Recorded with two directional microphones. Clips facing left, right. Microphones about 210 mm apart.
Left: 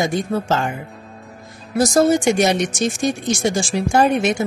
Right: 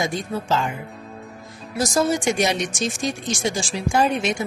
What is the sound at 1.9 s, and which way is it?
A woman's voice, 55° left (ahead or behind).